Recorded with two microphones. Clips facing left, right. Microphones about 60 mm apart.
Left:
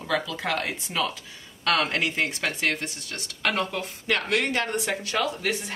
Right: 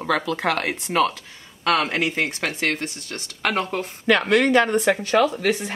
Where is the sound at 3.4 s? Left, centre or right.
Right.